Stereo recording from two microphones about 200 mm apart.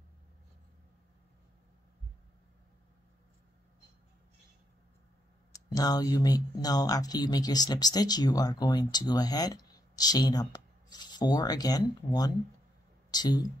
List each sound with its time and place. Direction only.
5.5 s speech: 20° left (ahead or behind)